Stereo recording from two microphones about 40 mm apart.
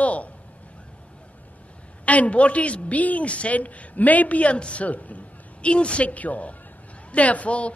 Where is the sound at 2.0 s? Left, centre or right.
Left.